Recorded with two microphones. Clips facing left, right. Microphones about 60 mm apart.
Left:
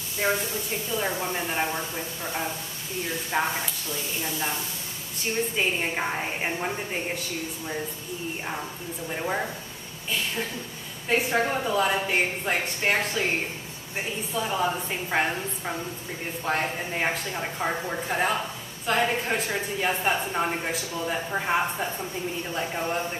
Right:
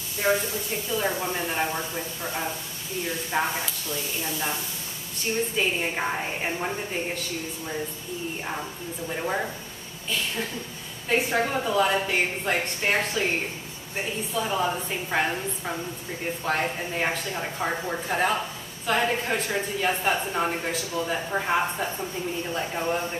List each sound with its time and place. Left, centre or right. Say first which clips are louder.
0.2 s a woman's voice: right 3 dB; centre
0.9 s speech: right 1 dB; centre
3.3 s a woman's voice: even; centre
5.6 s a woman's voice: even; centre
6.1 s speech: even; centre
9.1 s speech: even; centre
11.1 s speech: even; centre
14.3 s speech: even; centre